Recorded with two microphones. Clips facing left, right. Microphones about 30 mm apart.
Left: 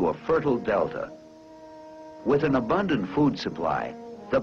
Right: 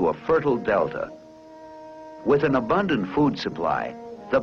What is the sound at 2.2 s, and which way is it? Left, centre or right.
Speech, centre.